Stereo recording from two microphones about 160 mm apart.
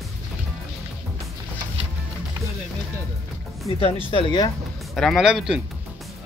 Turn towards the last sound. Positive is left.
turn(degrees=-5)  # may be behind; listen again after turning